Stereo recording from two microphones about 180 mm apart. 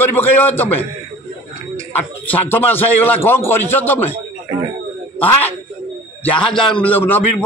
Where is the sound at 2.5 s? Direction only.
10° left (ahead or behind).